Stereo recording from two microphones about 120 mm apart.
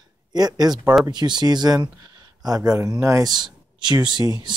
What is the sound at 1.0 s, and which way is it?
Speech, 35° right (ahead or behind).